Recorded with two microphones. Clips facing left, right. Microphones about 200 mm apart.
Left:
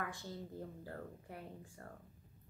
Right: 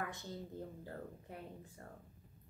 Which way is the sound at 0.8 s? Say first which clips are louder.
Even; 20° right (ahead or behind).